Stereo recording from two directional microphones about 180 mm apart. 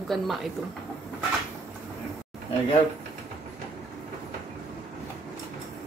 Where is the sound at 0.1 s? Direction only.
Centre (ahead or behind).